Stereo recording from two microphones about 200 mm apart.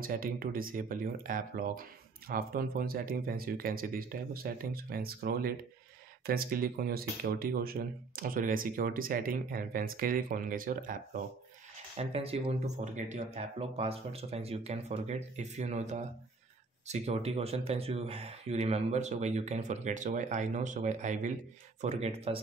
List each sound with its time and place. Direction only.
0.0 s speech: 45° right (ahead or behind)
12.0 s speech: 30° right (ahead or behind)